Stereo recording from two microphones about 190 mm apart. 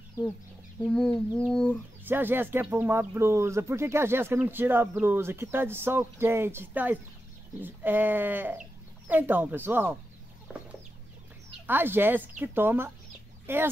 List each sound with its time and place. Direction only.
0.8 s chicken: 5° left (ahead or behind)
2.0 s speech: 10° right (ahead or behind)
10.5 s chicken: 5° right (ahead or behind)
11.6 s speech: 10° right (ahead or behind)